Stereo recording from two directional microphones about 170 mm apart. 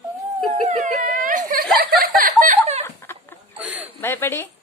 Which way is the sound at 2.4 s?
45° right (ahead or behind).